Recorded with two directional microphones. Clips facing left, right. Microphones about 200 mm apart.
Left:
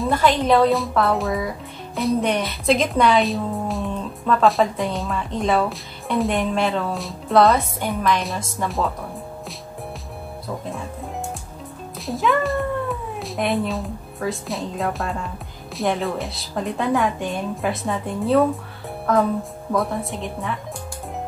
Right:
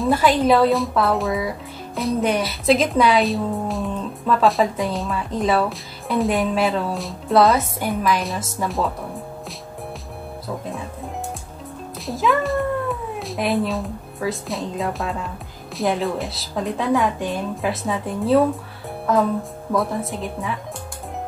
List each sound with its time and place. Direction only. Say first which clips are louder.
0.0 s speech: right 2 dB; 5° right (ahead or behind)
12.1 s speech: even; centre (ahead or behind)